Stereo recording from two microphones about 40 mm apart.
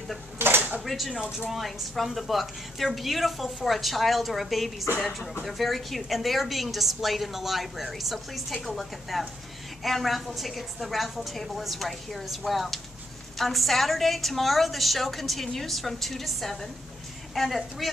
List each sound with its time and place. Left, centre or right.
0.4 s drawer open or close: right
0.8 s a woman's voice: centre